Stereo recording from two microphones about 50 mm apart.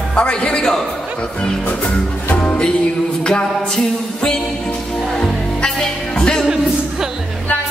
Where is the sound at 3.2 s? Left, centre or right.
Centre.